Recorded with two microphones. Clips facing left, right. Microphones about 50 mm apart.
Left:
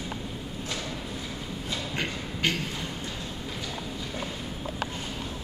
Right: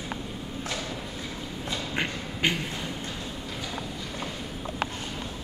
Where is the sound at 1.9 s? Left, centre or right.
Centre.